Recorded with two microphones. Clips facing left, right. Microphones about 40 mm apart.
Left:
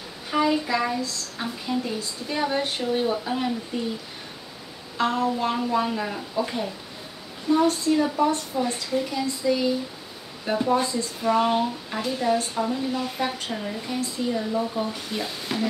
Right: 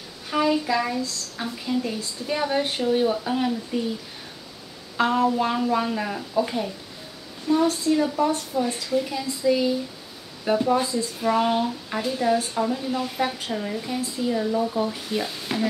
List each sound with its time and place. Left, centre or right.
0.3 s child singing: centre
1.4 s speech: centre
2.2 s speech: centre
4.9 s speech: centre
5.5 s speech: centre